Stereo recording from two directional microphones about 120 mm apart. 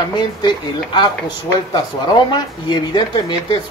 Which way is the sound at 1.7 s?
35° left (ahead or behind).